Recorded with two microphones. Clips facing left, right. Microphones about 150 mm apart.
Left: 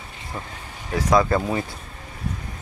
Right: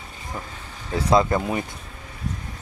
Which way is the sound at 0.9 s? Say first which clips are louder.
Even; 20° right (ahead or behind).